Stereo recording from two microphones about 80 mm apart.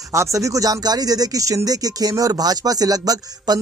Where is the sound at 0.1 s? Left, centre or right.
Right.